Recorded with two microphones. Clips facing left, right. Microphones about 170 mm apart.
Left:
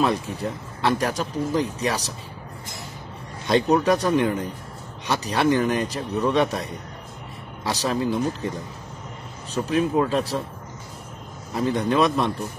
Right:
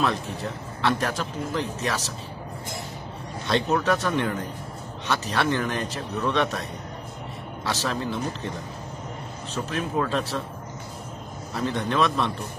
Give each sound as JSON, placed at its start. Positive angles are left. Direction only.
{"t": 0.0, "sound": "speech", "side_deg": 10}
{"t": 3.4, "sound": "speech", "side_deg": 15}
{"t": 7.6, "sound": "speech", "side_deg": 15}
{"t": 9.7, "sound": "speech", "side_deg": 15}
{"t": 11.5, "sound": "speech", "side_deg": 15}